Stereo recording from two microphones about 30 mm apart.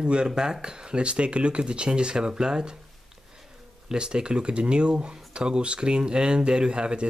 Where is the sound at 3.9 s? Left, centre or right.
Right.